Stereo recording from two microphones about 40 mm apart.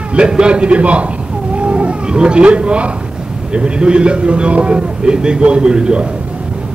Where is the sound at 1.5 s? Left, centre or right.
Right.